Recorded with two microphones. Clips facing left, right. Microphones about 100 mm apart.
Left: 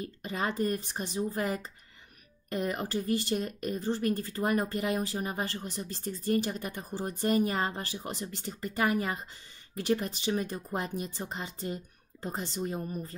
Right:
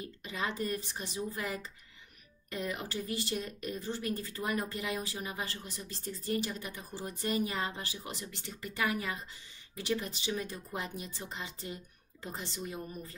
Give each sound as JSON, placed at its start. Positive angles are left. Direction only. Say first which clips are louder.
{"t": 0.0, "sound": "speech", "louder": "left 4 dB", "side_deg": 45}